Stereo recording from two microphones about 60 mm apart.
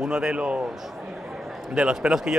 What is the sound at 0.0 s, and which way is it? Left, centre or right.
Speech, centre.